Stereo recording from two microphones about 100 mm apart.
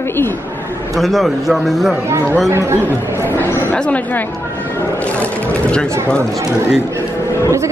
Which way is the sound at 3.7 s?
10° left (ahead or behind).